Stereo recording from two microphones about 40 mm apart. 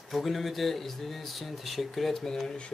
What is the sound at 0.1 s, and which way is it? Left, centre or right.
Speech, centre.